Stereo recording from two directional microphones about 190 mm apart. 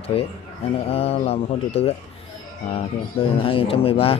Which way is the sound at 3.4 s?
30° left (ahead or behind).